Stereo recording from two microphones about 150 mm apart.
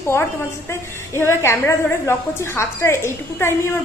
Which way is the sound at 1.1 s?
20° left (ahead or behind).